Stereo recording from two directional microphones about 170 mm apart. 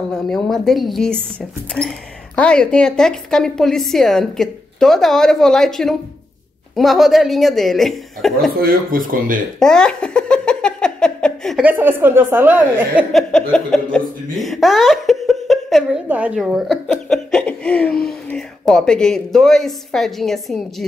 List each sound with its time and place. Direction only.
0.1 s speech: centre (ahead or behind)
8.5 s speech: 55° right (ahead or behind)
9.6 s giggle: 5° left (ahead or behind)
11.6 s a woman's voice: 10° right (ahead or behind)
13.1 s a sound: 5° left (ahead or behind)
13.9 s speech: centre (ahead or behind)